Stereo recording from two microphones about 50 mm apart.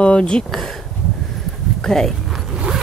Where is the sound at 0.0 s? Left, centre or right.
Left.